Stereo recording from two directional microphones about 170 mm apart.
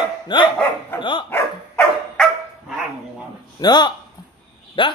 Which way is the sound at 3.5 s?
25° left (ahead or behind).